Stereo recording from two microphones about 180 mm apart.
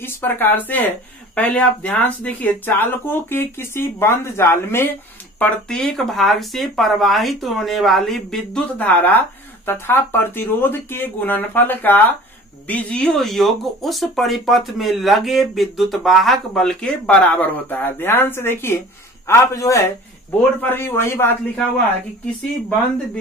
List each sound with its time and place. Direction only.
0.0 s speech: 10° left (ahead or behind)